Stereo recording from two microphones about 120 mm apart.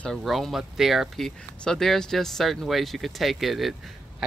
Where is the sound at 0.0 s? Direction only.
Centre (ahead or behind).